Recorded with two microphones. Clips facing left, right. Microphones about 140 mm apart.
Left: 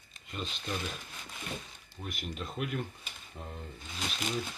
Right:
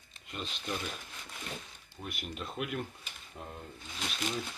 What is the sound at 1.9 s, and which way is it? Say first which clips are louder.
Speech: left 1 dB; 5° right (ahead or behind).